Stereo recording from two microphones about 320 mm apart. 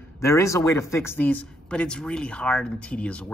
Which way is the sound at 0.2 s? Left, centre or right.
Centre.